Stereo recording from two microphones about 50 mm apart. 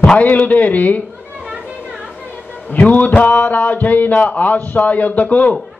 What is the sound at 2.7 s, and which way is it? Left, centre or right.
A man's voice, left.